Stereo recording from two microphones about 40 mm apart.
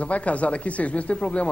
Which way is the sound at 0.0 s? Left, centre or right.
Left.